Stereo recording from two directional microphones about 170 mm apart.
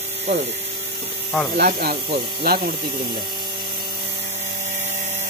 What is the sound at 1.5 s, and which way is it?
Speech, 65° right (ahead or behind).